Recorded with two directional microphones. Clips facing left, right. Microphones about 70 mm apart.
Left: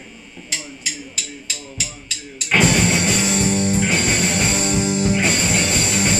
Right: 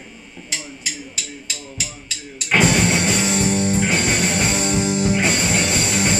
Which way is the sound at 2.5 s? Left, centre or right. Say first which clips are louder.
Even; right.